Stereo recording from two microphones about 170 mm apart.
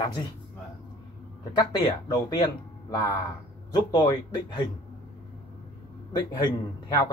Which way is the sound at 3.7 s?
25° left (ahead or behind).